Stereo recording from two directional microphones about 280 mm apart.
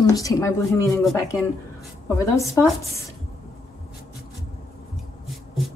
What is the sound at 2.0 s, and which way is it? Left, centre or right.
Speech, centre.